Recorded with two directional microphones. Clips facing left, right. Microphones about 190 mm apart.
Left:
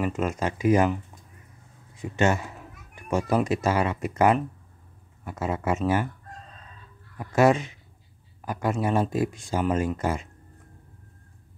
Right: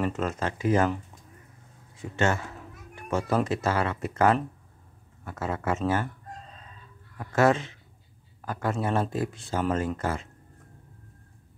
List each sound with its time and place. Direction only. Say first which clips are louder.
0.0 s speech: left 2 dB; 15° left (ahead or behind)
2.0 s speech: left 3 dB; 15° left (ahead or behind)
7.2 s speech: left 2 dB; 15° left (ahead or behind)